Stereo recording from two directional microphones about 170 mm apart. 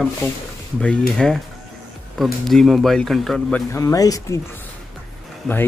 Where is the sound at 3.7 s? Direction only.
20° left (ahead or behind).